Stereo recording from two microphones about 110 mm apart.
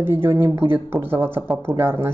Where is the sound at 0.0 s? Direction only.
20° right (ahead or behind).